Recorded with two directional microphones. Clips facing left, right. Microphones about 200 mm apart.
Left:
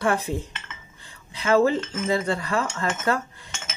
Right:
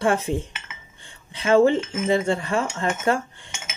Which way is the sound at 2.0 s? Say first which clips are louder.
Right 3 dB; 25° right (ahead or behind).